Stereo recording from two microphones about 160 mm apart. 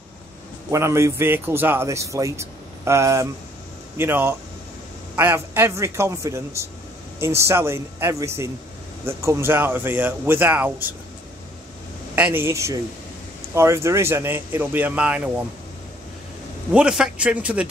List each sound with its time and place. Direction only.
0.7 s a man's voice: 15° right (ahead or behind)
12.2 s a man's voice: 10° right (ahead or behind)
16.7 s a man's voice: 5° right (ahead or behind)